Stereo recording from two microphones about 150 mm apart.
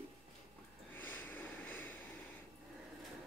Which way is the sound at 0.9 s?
10° left (ahead or behind).